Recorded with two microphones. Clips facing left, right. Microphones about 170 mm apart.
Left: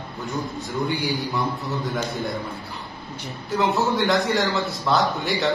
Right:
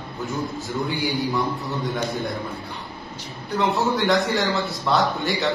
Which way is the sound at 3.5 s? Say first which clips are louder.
Even; centre (ahead or behind).